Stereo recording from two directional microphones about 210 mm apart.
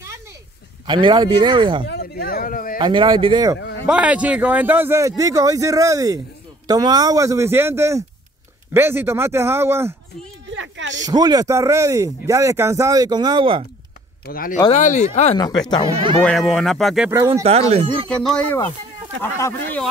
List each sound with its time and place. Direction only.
0.8 s speech: 25° right (ahead or behind)
1.9 s speech: 50° left (ahead or behind)
2.8 s speech: 20° right (ahead or behind)
3.8 s speech: 5° right (ahead or behind)
10.5 s a sound: 60° right (ahead or behind)
11.1 s speech: 20° right (ahead or behind)
14.2 s speech: 45° left (ahead or behind)
15.3 s speech: 20° left (ahead or behind)
16.2 s speech: 5° left (ahead or behind)
17.1 s speech: 15° right (ahead or behind)
17.4 s speech: 30° right (ahead or behind)
18.2 s speech: 5° left (ahead or behind)